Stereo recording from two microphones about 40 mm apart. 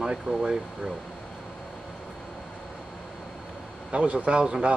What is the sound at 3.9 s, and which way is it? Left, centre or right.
Speech, right.